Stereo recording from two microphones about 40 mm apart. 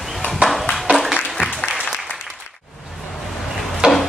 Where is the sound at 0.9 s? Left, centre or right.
Centre.